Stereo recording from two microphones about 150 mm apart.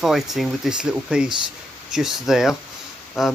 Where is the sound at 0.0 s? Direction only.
Centre (ahead or behind).